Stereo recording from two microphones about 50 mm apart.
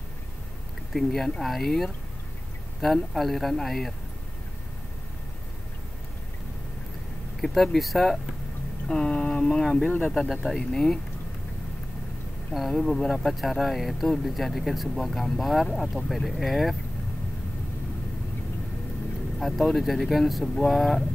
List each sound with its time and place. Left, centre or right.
0.9 s speech: centre
7.4 s speech: centre
8.8 s speech: centre
9.8 s speech: centre
10.1 s speech: centre
12.5 s speech: centre
19.4 s speech: centre